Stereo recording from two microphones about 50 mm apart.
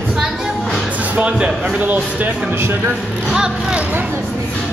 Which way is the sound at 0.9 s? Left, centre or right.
Right.